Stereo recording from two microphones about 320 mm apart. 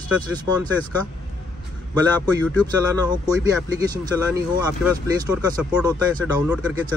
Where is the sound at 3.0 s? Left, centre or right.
Centre.